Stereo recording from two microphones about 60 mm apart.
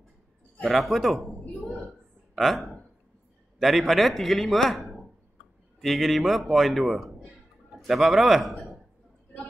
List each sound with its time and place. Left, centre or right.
0.7 s a man's voice: centre
1.4 s a sound: left
2.3 s a man's voice: centre